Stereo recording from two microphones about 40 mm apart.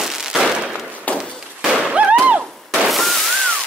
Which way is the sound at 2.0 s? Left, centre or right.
Right.